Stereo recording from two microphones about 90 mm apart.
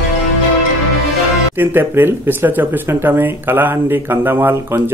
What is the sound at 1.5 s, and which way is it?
Speech, 25° right (ahead or behind).